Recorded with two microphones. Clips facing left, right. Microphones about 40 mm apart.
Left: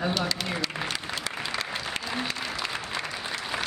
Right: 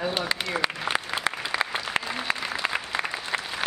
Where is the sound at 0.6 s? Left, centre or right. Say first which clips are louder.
Right 4 dB; right.